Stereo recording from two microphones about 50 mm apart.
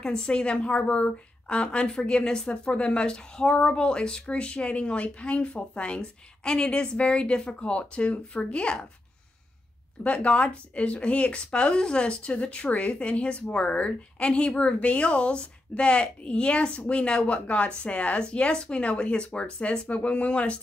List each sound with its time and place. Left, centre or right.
0.0 s a woman's voice: centre
10.0 s a woman's voice: left